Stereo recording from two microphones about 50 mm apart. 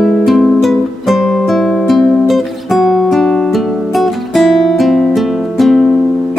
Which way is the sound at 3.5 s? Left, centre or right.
Centre.